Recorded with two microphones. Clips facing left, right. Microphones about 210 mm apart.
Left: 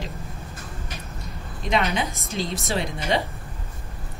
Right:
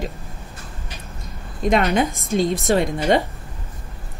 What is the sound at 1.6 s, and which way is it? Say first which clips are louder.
A woman's voice: right 6 dB; 50° right (ahead or behind).